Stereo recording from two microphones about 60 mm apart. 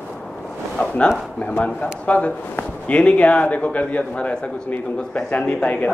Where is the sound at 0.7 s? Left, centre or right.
Centre.